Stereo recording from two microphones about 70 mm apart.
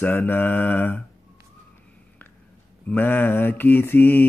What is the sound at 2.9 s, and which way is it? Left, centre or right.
Mantra, left.